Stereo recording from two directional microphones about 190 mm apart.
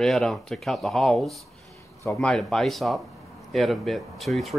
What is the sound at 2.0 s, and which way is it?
Speech, 10° left (ahead or behind).